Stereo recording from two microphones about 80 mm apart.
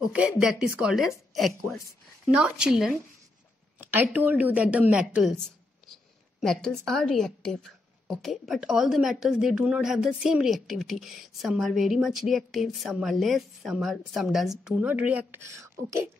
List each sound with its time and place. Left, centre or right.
0.0 s speech: centre
1.3 s a woman's voice: centre
2.3 s speech: centre
3.7 s a woman's voice: right
6.4 s a woman's voice: centre
14.8 s a woman's voice: centre